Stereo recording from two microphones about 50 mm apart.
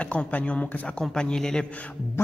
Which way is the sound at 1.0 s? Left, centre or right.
Centre.